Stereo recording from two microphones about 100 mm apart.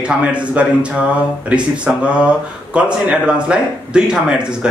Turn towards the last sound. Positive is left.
turn(degrees=-10)  # may be behind; listen again after turning